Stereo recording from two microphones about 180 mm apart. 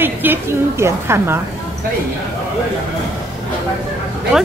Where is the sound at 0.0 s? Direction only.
10° right (ahead or behind).